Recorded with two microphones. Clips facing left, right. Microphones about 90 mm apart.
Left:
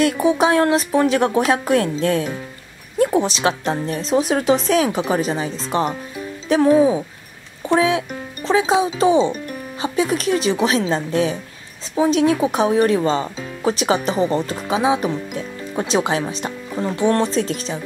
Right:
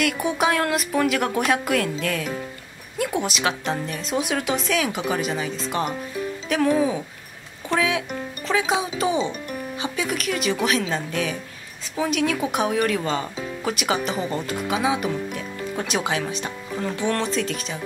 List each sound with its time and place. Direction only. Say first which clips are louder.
0.0 s speech: left 6 dB; 30° left (ahead or behind)